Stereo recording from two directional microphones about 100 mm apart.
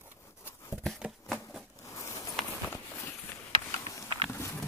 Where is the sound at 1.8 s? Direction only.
30° left (ahead or behind).